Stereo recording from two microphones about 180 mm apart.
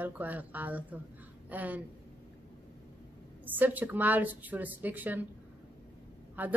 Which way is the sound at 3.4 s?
10° right (ahead or behind).